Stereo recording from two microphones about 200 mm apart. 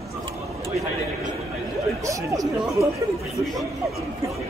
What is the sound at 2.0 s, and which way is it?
Speech, 15° right (ahead or behind).